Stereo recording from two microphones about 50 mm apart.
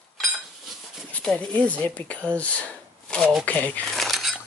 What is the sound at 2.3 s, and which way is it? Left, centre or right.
Shuffling cards, left.